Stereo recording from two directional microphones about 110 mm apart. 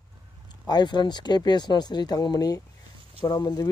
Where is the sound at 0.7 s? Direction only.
40° left (ahead or behind).